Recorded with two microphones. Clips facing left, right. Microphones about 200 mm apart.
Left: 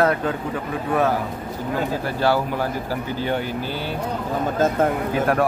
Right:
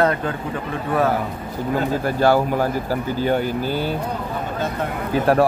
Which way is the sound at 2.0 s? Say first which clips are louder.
Right 5 dB; 45° right (ahead or behind).